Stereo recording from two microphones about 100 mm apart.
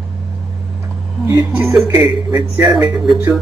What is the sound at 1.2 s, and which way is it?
Speech, 25° right (ahead or behind).